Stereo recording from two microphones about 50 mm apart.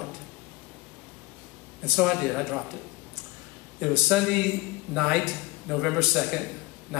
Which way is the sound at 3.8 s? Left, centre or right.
Centre.